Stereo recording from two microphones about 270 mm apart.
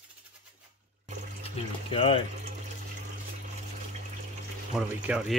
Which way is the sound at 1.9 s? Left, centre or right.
Centre.